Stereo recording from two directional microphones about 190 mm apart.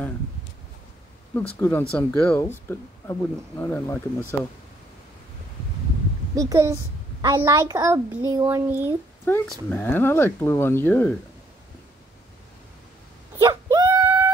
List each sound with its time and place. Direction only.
1.3 s speech: 5° left (ahead or behind)
6.3 s a woman's voice: 15° right (ahead or behind)
9.2 s speech: 10° left (ahead or behind)
13.4 s a sound: 20° right (ahead or behind)